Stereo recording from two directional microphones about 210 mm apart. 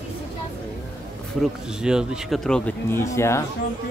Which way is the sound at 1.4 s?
5° right (ahead or behind).